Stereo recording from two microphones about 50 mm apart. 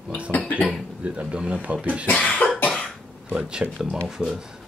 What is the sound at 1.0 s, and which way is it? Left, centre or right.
Speech, right.